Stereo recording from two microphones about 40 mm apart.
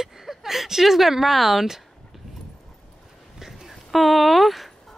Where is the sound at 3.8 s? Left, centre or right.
Centre.